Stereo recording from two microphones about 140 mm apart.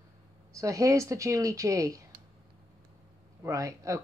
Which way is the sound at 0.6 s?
20° right (ahead or behind).